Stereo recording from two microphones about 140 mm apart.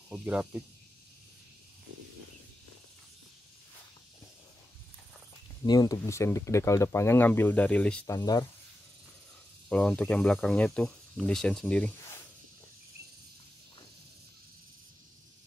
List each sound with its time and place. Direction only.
0.1 s speech: 10° right (ahead or behind)
5.7 s speech: 25° left (ahead or behind); by 8.1 s 10° left (ahead or behind)
8.2 s speech: 30° left (ahead or behind)
9.7 s speech: 5° left (ahead or behind)